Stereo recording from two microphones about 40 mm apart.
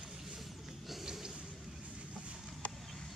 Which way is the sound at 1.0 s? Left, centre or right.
Centre.